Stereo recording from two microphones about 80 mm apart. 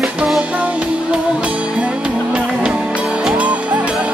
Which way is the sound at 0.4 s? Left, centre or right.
Centre.